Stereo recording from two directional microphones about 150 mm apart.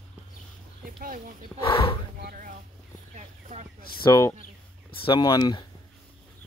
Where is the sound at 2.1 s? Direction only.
80° right.